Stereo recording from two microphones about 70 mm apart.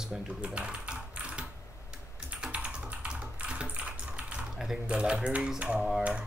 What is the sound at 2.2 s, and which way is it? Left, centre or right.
Typing, centre.